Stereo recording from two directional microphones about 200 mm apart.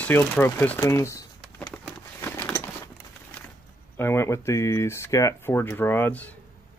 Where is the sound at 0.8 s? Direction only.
15° left (ahead or behind).